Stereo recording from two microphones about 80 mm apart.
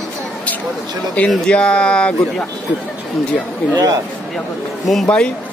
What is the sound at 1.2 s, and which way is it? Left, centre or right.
Speech, centre.